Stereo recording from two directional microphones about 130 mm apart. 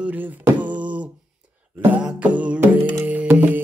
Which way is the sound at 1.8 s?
15° right (ahead or behind).